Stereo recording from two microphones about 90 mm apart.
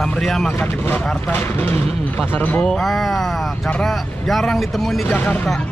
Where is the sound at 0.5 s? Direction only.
25° left (ahead or behind).